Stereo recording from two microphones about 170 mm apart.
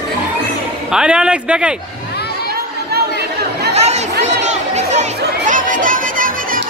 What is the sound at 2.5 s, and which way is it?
Chatter, 70° right (ahead or behind).